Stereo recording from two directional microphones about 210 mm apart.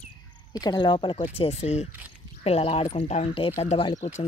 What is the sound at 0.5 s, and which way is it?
Speech, 20° left (ahead or behind).